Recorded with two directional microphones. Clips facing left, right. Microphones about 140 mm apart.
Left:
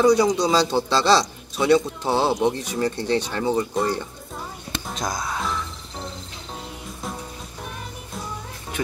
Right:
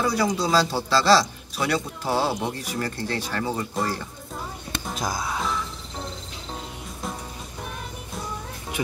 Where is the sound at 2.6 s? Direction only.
20° left (ahead or behind).